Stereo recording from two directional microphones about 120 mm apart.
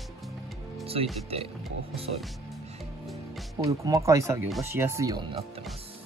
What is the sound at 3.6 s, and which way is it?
Speech, 30° right (ahead or behind).